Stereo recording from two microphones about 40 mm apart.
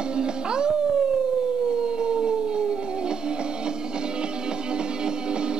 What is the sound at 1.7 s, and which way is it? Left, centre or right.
Howl, right.